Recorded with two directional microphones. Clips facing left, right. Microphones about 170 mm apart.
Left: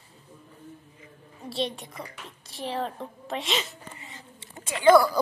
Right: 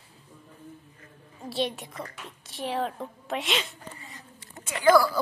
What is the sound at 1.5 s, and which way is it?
A woman's voice, centre (ahead or behind).